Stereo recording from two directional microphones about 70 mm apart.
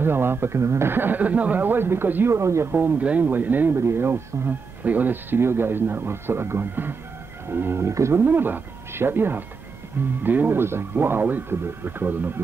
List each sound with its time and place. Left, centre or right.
0.0 s speech: right
2.3 s speech: right
2.7 s speech: right
3.7 s speech: right
7.9 s speech: right
8.2 s speech: right